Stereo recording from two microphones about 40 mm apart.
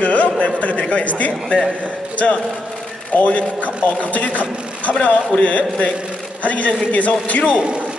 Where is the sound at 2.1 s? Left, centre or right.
Left.